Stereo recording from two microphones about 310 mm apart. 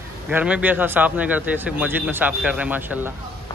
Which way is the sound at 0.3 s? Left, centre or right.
Centre.